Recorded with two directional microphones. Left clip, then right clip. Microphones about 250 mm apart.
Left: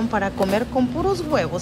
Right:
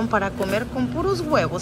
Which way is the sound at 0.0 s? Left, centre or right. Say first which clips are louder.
Left 1 dB; centre.